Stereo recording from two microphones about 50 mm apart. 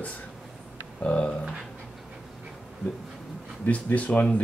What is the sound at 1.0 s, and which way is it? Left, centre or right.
Speech, left.